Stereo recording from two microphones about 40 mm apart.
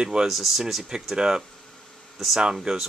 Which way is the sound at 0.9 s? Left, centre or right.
Centre.